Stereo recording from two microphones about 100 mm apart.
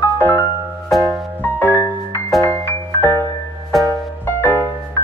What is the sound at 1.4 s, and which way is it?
Music, 25° left (ahead or behind).